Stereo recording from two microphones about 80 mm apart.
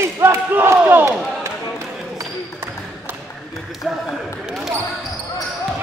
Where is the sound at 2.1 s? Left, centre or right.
Right.